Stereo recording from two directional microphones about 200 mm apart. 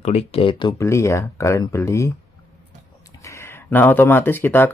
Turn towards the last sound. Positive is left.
turn(degrees=10)  # may be behind; listen again after turning